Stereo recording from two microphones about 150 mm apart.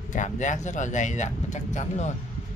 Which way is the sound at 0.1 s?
55° left (ahead or behind).